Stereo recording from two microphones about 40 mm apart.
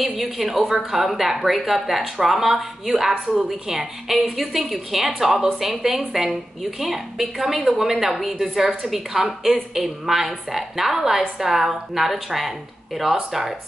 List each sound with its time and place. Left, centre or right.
0.0 s a woman's voice: centre